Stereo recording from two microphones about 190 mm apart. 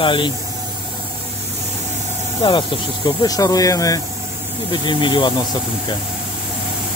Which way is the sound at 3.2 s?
20° left (ahead or behind).